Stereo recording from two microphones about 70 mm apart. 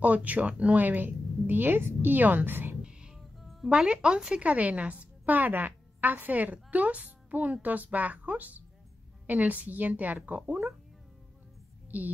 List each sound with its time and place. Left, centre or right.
0.0 s a woman's voice: right
2.8 s music: centre
3.7 s a woman's voice: centre